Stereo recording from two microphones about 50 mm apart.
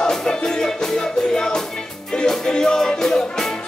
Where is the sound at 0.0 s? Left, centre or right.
Centre.